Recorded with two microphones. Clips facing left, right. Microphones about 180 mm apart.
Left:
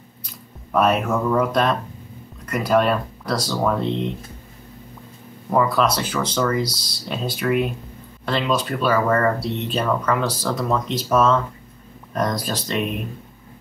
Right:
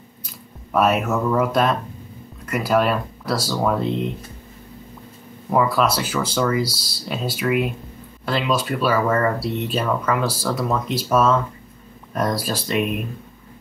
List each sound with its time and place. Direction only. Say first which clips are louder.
0.7 s speech: even; 5° right (ahead or behind)
5.5 s speech: even; 5° right (ahead or behind)